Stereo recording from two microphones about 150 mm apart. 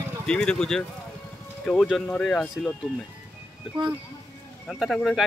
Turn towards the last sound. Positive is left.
turn(degrees=0)  # may be behind; listen again after turning